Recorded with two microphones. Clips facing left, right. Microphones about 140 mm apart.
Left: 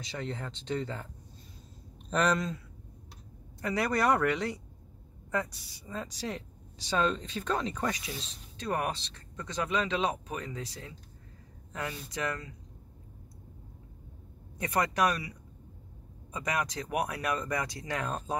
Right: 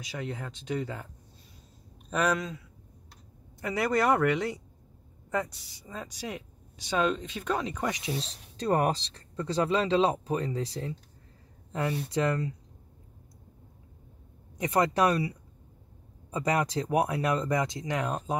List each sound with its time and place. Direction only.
0.0 s speech: 10° right (ahead or behind)
2.0 s speech: 5° right (ahead or behind)
3.6 s speech: 15° right (ahead or behind)
12.1 s speech: 30° right (ahead or behind)
14.6 s speech: 25° right (ahead or behind)